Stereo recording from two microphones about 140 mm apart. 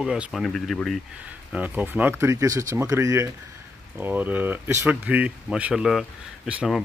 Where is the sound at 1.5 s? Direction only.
10° right (ahead or behind).